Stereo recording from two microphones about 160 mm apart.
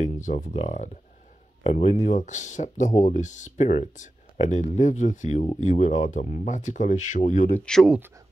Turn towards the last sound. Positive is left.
turn(degrees=0)  # may be behind; listen again after turning